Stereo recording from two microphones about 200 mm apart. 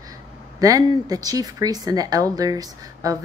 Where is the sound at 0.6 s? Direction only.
15° right (ahead or behind).